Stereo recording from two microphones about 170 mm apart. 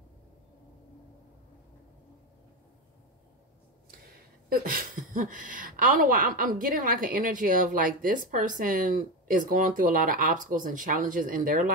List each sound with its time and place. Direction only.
4.5 s speech: 60° right (ahead or behind)